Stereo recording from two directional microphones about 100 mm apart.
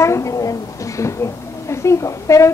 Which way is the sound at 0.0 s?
30° left (ahead or behind).